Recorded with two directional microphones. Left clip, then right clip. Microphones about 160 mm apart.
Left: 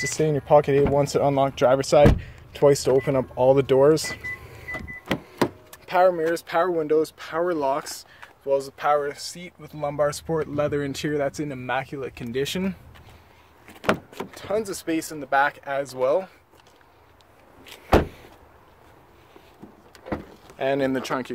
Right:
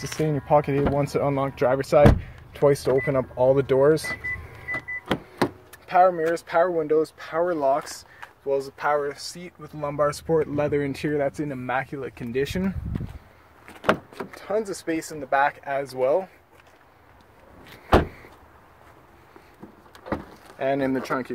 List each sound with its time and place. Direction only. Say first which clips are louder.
0.0 s speech: left 3 dB; 20° left (ahead or behind)
5.9 s speech: right 1 dB; 15° left (ahead or behind)
11.1 s speech: right 1 dB; 15° left (ahead or behind)
14.3 s speech: even; 10° left (ahead or behind)
17.6 s vehicle: even; 15° left (ahead or behind)
20.5 s speech: left 1 dB; 20° left (ahead or behind)